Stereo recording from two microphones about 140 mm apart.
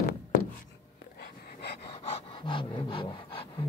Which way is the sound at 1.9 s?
35° left (ahead or behind).